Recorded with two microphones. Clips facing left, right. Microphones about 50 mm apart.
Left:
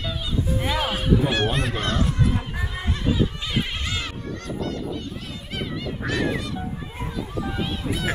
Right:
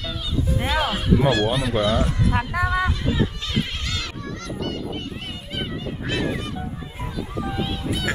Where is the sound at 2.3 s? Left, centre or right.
Right.